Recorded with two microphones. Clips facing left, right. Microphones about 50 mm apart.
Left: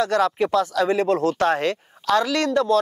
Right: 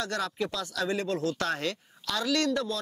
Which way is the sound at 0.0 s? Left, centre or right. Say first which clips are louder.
Left 11 dB; left.